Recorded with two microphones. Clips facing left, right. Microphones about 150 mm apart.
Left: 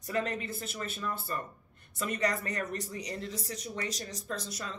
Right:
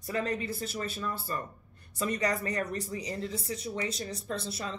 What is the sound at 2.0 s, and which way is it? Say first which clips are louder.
Speech: right 2 dB; 35° right (ahead or behind).